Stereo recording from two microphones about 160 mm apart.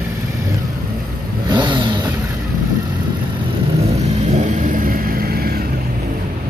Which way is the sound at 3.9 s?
45° right (ahead or behind).